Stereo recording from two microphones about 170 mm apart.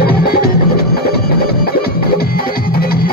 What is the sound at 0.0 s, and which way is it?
Music, 65° left (ahead or behind).